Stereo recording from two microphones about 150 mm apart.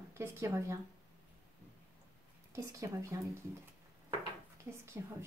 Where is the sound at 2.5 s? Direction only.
20° right (ahead or behind).